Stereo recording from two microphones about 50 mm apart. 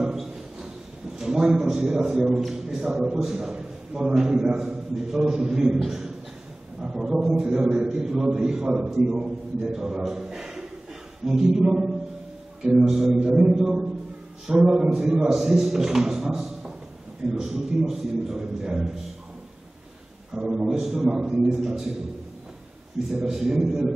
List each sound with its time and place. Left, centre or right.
0.0 s a sound: centre
1.1 s a man's voice: centre
4.9 s a man's voice: centre
20.3 s a man's voice: centre
23.1 s a man's voice: centre